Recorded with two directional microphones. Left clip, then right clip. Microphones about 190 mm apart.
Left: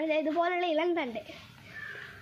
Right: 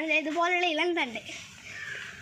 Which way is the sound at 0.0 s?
55° left (ahead or behind).